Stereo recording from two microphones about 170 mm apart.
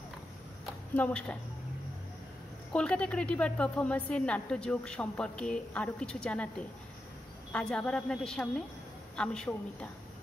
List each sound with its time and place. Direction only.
0.9 s a woman's voice: 5° left (ahead or behind)
2.7 s a woman's voice: 5° left (ahead or behind)
7.5 s a woman's voice: 5° left (ahead or behind)